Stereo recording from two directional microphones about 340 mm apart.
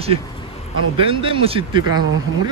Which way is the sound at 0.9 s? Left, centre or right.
Centre.